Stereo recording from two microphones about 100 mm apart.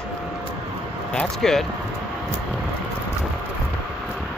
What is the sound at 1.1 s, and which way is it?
Speech, 5° left (ahead or behind).